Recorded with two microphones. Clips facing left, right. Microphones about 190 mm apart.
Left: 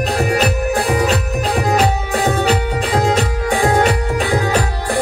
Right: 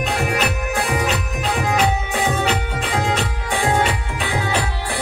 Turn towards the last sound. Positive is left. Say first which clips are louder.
# left 6 dB
turn(degrees=40)  # may be behind; listen again after turning